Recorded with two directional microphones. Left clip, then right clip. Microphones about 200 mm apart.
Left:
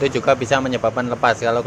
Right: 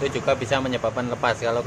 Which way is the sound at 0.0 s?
20° left (ahead or behind).